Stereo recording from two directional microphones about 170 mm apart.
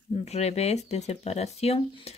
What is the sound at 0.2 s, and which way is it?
Speech, 40° left (ahead or behind).